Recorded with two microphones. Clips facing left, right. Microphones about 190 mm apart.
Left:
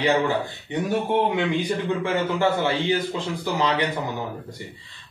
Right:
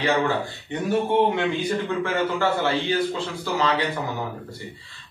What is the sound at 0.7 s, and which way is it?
Speech, 15° left (ahead or behind).